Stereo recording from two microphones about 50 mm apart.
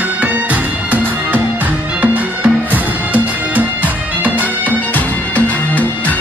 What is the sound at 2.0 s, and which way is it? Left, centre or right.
Music, right.